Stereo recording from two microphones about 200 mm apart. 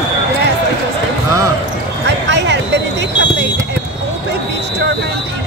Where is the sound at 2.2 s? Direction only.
60° right (ahead or behind).